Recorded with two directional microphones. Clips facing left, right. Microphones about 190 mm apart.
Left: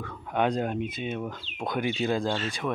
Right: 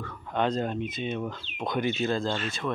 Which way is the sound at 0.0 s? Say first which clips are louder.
Left 1 dB; 10° left (ahead or behind).